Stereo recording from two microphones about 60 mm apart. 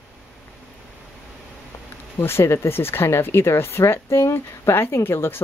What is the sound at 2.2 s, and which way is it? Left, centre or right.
Speech, left.